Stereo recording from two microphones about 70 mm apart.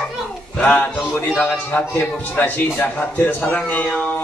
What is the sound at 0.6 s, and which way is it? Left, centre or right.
Speech, left.